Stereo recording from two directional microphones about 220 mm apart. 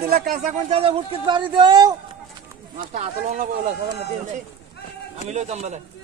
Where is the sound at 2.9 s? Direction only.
30° right (ahead or behind).